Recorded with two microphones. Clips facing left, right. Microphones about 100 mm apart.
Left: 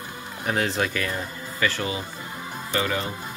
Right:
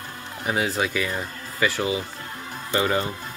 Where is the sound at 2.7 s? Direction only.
30° right (ahead or behind).